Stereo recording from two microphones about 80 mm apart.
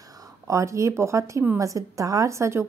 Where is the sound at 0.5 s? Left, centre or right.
Right.